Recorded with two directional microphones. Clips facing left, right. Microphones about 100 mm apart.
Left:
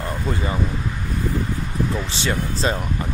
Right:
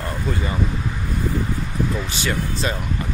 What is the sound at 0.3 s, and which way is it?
Speech, 25° left (ahead or behind).